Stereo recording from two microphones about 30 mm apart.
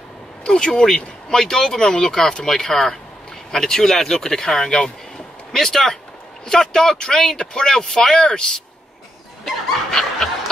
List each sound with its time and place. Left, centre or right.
0.4 s speech: left
1.9 s speech: left
2.4 s speech: centre
9.4 s snicker: centre